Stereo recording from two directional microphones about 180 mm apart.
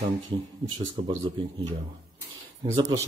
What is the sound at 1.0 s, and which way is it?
Speech, 65° right (ahead or behind).